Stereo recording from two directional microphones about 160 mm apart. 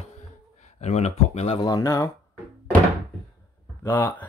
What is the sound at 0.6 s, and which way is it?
Speech, 45° left (ahead or behind).